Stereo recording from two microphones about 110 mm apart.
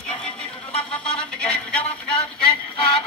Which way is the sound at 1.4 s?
10° left (ahead or behind).